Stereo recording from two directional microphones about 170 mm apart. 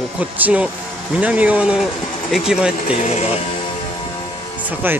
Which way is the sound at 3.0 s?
40° left (ahead or behind).